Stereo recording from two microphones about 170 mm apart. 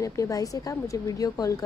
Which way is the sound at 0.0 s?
20° left (ahead or behind).